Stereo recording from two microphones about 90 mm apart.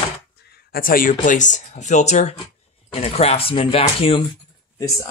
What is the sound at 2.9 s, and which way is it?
Speech, 90° left.